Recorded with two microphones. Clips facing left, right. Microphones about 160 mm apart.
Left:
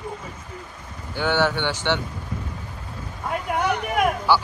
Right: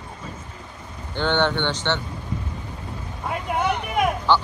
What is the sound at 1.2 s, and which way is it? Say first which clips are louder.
Speech: even; 5° left (ahead or behind).